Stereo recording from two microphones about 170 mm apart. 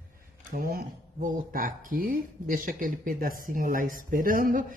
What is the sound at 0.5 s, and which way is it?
A man's voice, 55° right (ahead or behind).